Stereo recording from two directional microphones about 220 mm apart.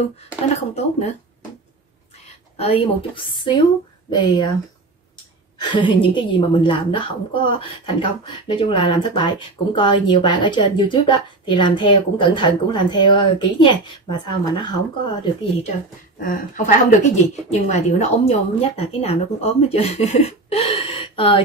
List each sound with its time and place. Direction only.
0.6 s a woman's voice: 30° left (ahead or behind)
2.5 s a woman's voice: 25° left (ahead or behind)
5.6 s a woman's voice: 20° left (ahead or behind)
16.2 s a woman's voice: 35° left (ahead or behind)